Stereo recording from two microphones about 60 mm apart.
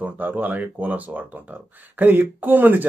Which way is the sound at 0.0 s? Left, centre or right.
Right.